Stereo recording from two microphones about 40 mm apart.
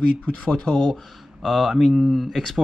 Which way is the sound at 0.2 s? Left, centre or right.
Left.